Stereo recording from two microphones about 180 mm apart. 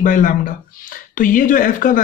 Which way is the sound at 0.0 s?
45° left (ahead or behind).